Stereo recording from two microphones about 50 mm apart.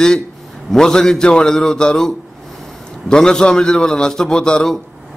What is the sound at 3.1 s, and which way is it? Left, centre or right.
A man's voice, centre.